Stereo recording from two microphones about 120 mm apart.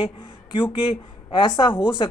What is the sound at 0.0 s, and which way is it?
A woman's voice, 45° left (ahead or behind).